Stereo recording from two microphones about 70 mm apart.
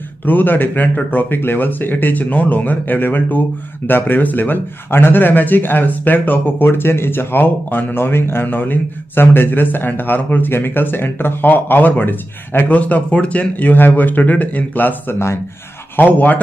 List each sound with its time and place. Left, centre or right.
0.2 s speech: left